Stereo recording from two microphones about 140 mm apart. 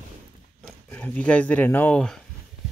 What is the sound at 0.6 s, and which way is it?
Speech, 10° left (ahead or behind).